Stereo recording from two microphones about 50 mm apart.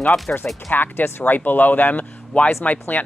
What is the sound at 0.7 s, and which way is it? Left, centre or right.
Speech, left.